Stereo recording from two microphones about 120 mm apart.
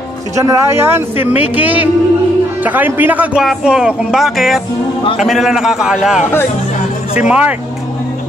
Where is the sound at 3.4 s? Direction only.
5° right (ahead or behind).